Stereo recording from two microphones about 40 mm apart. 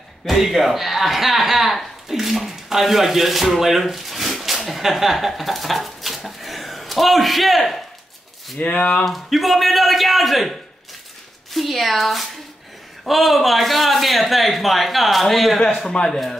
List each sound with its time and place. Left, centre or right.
0.2 s speech: centre
8.5 s speech: left
9.0 s speech: centre
15.6 s a man's voice: left